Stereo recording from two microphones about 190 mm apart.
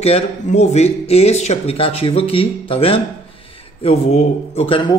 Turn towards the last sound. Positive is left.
turn(degrees=30)  # may be behind; listen again after turning